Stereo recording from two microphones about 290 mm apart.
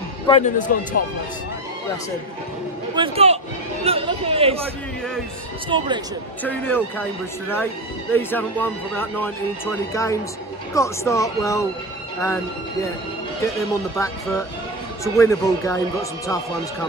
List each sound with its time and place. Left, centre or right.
0.3 s a man's voice: left
2.9 s a man's voice: centre
5.7 s speech: centre
6.4 s speech: centre
13.9 s speech: centre